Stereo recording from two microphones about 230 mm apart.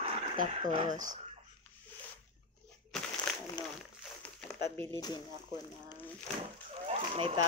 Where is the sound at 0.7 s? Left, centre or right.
Right.